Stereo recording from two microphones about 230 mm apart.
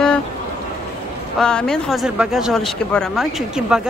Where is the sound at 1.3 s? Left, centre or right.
Centre.